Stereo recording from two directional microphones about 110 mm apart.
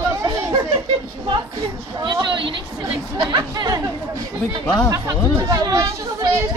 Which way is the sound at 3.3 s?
35° right (ahead or behind).